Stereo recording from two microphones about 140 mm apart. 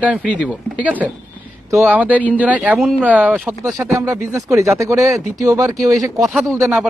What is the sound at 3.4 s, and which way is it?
Speech, centre (ahead or behind).